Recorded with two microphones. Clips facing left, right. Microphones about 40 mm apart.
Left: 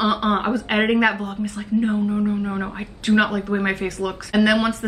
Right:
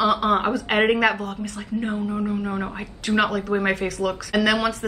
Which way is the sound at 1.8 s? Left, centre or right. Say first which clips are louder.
Left 5 dB; centre.